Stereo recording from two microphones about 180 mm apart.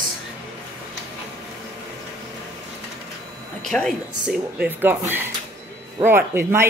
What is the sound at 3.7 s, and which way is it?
Speech, centre (ahead or behind).